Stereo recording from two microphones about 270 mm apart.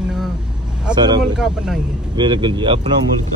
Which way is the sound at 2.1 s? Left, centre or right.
Centre.